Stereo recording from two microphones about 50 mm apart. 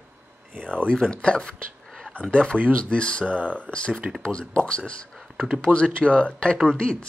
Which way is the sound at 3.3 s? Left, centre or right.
Right.